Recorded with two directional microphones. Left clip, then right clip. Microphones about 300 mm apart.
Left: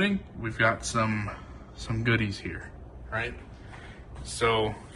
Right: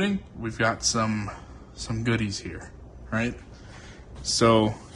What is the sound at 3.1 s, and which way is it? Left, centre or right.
Speech, right.